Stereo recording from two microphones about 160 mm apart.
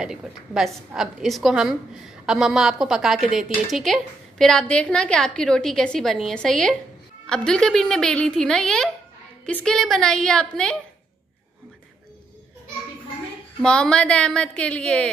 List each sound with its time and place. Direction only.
0.0 s a woman's voice: 5° right (ahead or behind)
13.6 s a woman's voice: 5° left (ahead or behind)